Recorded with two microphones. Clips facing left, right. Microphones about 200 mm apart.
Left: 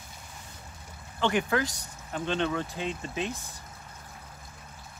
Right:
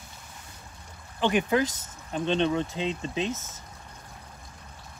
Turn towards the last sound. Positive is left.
turn(degrees=-20)  # may be behind; listen again after turning